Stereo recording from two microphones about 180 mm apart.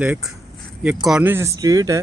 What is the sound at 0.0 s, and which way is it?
Speech, 10° right (ahead or behind).